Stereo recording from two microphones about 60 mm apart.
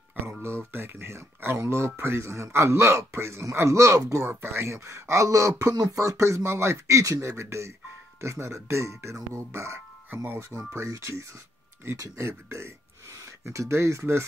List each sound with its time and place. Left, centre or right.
0.7 s speech: right
4.2 s speech: right
10.5 s speech: centre
10.9 s speech: right